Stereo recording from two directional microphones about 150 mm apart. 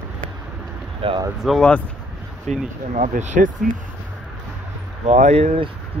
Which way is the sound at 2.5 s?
50° right (ahead or behind).